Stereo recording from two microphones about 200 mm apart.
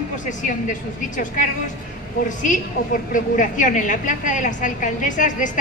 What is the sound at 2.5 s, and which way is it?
A woman's voice, 40° left (ahead or behind).